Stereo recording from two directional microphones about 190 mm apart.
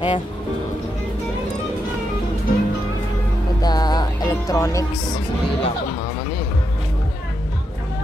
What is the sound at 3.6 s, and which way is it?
Music, 20° left (ahead or behind).